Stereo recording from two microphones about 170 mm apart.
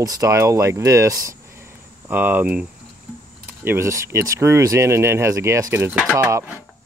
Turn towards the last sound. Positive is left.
turn(degrees=-15)  # may be behind; listen again after turning